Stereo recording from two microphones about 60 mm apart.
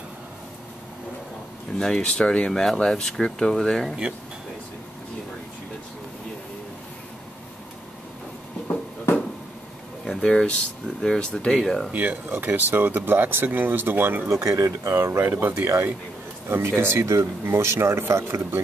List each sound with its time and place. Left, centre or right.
1.8 s speech: centre
8.6 s a sound: left
10.0 s speech: centre
11.9 s speech: right
14.9 s speech: right